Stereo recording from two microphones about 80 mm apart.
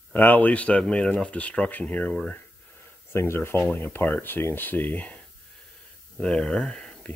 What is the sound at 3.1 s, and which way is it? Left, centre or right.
Speech, left.